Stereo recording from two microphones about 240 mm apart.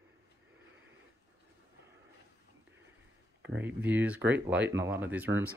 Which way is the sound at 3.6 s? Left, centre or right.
Centre.